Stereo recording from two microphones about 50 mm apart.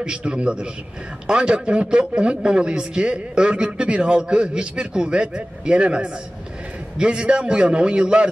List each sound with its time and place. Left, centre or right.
0.0 s a man's voice: centre